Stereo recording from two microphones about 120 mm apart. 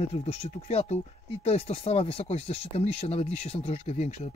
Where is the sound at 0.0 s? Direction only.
60° left (ahead or behind).